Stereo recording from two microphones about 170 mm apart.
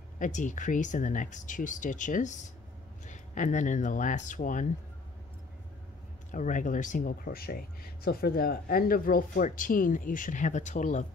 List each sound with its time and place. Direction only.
0.2 s speech: 45° left (ahead or behind)
6.3 s speech: 50° left (ahead or behind)